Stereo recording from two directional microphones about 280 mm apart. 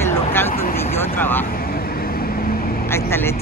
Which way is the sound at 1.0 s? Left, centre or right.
Centre.